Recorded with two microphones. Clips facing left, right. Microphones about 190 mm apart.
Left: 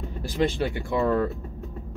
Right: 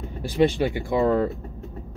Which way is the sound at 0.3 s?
Centre (ahead or behind).